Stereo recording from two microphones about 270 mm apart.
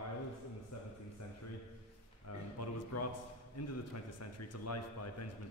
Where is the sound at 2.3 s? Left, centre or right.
Left.